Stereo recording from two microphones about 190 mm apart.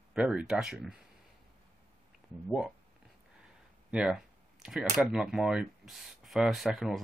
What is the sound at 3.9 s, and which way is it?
Speech, 5° right (ahead or behind).